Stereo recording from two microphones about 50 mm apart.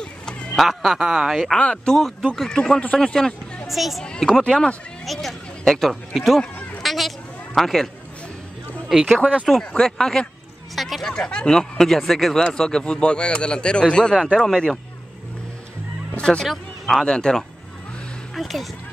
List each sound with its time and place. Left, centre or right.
0.0 s a sound: centre
0.6 s speech: centre
1.6 s speech: centre
3.6 s a child's voice: centre
4.0 s speech: centre
5.0 s speech: centre
6.8 s bleat: centre
8.8 s speech: centre
9.5 s speech: centre
10.8 s speech: centre
11.1 s speech: centre
16.2 s speech: centre
18.3 s speech: centre